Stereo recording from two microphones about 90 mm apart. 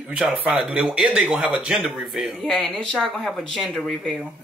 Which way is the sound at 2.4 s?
5° left (ahead or behind).